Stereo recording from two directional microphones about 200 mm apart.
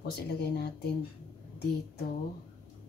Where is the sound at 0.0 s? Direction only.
55° left (ahead or behind).